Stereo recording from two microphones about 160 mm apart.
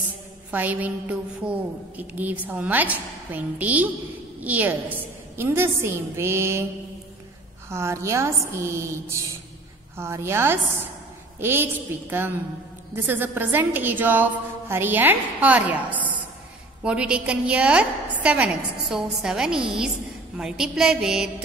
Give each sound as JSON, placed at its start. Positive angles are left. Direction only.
{"t": 0.5, "sound": "a woman's voice", "side_deg": -10}
{"t": 7.7, "sound": "a woman's voice", "side_deg": -15}
{"t": 18.9, "sound": "a sound", "side_deg": -5}